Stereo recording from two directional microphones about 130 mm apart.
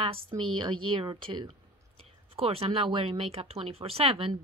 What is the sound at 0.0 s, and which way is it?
A woman's voice, 40° right (ahead or behind).